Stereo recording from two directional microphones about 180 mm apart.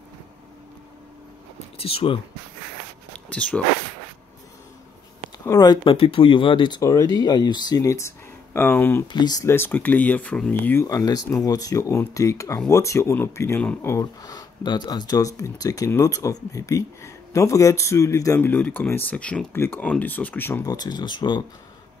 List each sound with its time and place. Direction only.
1.8 s speech: 35° left (ahead or behind)
3.1 s a sound: 5° left (ahead or behind)
5.4 s speech: 20° left (ahead or behind)
9.0 s speech: 25° left (ahead or behind)